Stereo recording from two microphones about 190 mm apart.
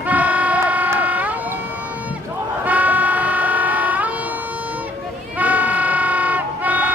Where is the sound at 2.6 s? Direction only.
10° right (ahead or behind).